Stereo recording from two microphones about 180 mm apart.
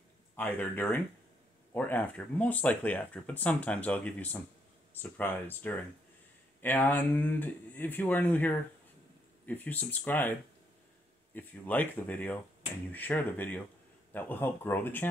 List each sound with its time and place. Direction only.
0.4 s speech: 10° left (ahead or behind)
11.3 s speech: 10° left (ahead or behind)